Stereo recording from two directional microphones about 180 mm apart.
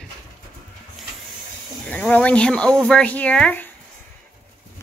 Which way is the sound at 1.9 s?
5° left (ahead or behind).